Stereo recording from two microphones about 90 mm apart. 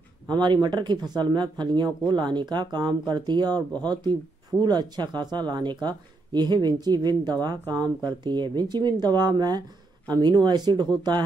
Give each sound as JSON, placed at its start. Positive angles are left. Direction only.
{"t": 0.3, "sound": "speech", "side_deg": -50}